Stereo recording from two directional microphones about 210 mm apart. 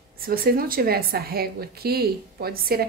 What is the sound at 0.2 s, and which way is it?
A woman's voice, 45° right (ahead or behind).